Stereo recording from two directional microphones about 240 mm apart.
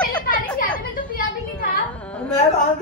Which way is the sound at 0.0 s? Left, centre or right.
Centre.